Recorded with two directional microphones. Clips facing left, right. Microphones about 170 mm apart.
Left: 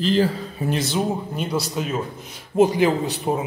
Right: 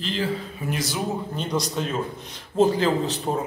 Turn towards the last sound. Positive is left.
turn(degrees=10)  # may be behind; listen again after turning